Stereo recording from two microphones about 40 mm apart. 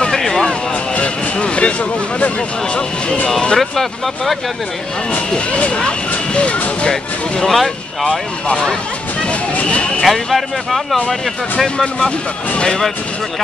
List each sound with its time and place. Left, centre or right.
0.0 s a sound: centre
0.9 s a sound: left
2.1 s speech: left
3.5 s speech: centre
5.3 s speech: left
6.9 s speech: centre
7.5 s speech: centre
9.2 s speech: left
10.0 s speech: centre